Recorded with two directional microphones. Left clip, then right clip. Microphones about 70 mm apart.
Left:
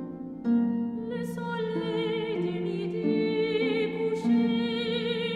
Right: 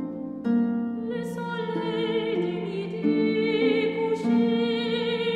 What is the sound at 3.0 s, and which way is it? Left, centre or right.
Music, left.